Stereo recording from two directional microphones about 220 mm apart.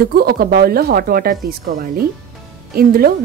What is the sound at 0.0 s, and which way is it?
A woman's voice, 45° right (ahead or behind).